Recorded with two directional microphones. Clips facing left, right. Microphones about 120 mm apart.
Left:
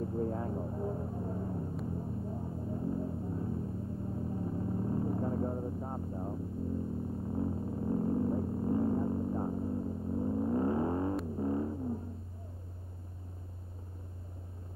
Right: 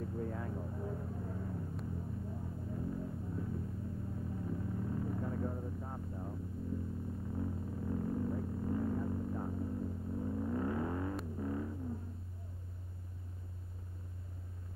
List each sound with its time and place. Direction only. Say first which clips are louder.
0.0 s vehicle: left 6 dB; 30° left (ahead or behind)
1.9 s music: left 5 dB; 30° left (ahead or behind)
7.2 s a sound: left 6 dB; 30° left (ahead or behind)
11.3 s music: left 6 dB; 30° left (ahead or behind)